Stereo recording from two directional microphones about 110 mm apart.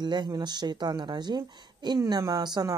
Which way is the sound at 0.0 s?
40° right (ahead or behind).